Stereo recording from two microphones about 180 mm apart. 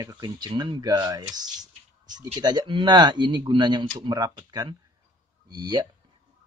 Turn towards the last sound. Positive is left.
turn(degrees=-20)  # may be behind; listen again after turning